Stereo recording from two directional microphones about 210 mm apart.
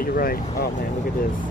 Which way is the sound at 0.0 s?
45° left (ahead or behind).